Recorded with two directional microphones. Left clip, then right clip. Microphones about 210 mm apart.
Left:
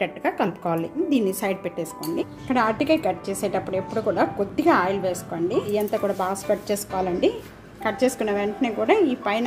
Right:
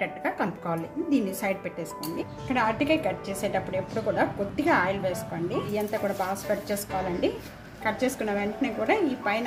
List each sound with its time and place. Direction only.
0.0 s a woman's voice: 30° left (ahead or behind)